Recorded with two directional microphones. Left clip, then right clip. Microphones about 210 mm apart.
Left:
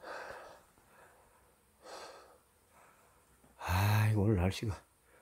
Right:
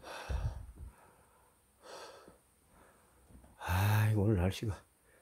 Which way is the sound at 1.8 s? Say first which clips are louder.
Left 1 dB; centre (ahead or behind).